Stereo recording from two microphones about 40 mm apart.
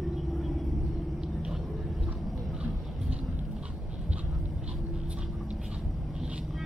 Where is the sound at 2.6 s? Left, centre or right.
Right.